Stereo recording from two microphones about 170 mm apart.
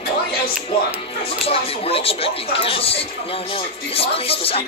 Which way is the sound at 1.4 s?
35° left (ahead or behind).